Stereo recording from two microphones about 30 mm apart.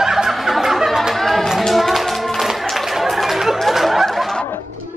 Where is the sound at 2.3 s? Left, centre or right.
Centre.